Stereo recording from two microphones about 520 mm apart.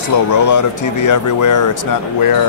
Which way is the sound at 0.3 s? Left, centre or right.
Left.